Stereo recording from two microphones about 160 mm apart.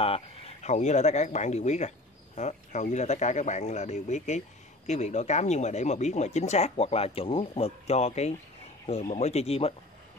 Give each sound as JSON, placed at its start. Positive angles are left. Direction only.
{"t": 0.0, "sound": "speech", "side_deg": 40}